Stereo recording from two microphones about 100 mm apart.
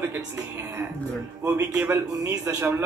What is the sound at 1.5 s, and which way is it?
Speech, 15° right (ahead or behind).